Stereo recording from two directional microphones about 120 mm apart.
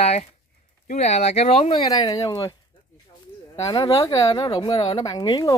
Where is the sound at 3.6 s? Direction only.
30° left (ahead or behind).